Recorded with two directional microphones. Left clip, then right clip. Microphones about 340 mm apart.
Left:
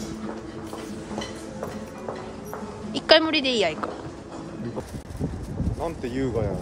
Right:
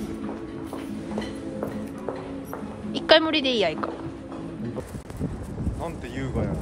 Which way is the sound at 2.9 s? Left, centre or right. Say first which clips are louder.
Even; centre.